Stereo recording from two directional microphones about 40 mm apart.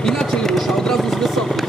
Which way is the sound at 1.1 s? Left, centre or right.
Centre.